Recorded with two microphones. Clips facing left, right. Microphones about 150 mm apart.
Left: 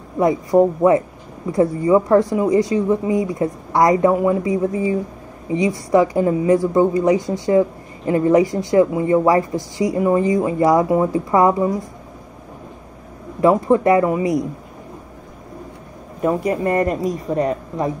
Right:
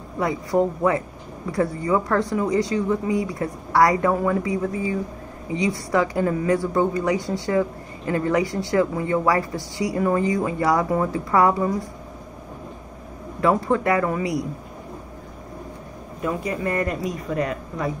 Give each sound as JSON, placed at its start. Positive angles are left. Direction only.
{"t": 0.2, "sound": "speech", "side_deg": 20}
{"t": 13.4, "sound": "speech", "side_deg": 20}
{"t": 16.4, "sound": "speech", "side_deg": 45}